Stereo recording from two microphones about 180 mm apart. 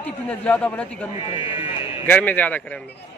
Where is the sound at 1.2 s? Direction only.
30° left (ahead or behind).